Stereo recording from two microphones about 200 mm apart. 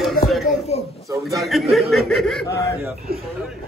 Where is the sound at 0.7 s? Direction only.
30° left (ahead or behind).